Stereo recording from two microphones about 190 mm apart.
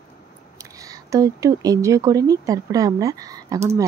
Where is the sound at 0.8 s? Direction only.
15° right (ahead or behind).